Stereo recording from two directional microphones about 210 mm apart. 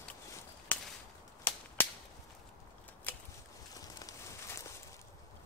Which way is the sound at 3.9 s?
15° left (ahead or behind).